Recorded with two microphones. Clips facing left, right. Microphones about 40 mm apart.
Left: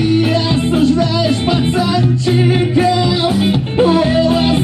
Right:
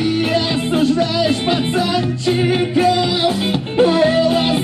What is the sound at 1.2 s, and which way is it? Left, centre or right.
Music, right.